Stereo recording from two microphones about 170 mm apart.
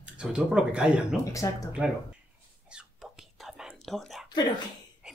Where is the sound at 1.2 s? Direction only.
20° left (ahead or behind).